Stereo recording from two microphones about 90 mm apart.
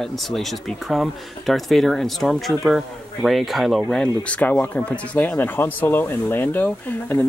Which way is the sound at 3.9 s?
10° left (ahead or behind).